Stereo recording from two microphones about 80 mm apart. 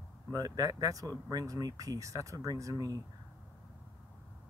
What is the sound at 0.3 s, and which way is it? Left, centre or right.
Speech, right.